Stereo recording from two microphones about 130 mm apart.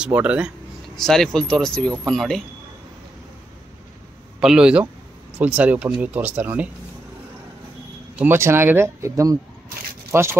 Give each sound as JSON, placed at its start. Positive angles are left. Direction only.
{"t": 0.0, "sound": "speech", "side_deg": -10}
{"t": 0.9, "sound": "speech", "side_deg": 5}
{"t": 4.4, "sound": "speech", "side_deg": -5}
{"t": 8.2, "sound": "speech", "side_deg": -20}